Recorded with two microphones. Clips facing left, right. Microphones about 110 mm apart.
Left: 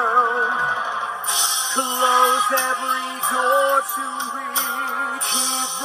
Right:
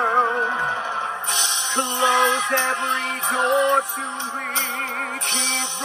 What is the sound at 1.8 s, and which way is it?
Music, 20° left (ahead or behind).